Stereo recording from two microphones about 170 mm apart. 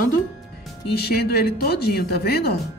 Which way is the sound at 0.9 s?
70° left (ahead or behind).